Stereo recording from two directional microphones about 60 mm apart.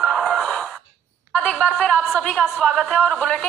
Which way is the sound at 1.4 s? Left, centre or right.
Left.